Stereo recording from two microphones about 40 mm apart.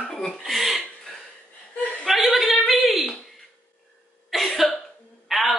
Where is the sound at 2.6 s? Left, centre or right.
Centre.